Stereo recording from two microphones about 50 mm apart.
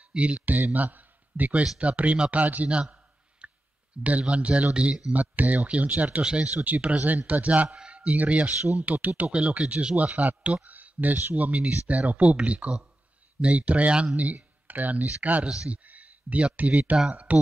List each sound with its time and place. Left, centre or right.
0.1 s a man's voice: right
2.4 s speech: right
2.7 s clicking: right
4.0 s speech: right
5.1 s speech: right
15.4 s speech: centre
15.8 s a sound: right
16.5 s speech: right
16.9 s speech: centre